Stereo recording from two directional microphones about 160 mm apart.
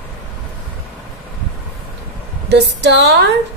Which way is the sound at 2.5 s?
90° right.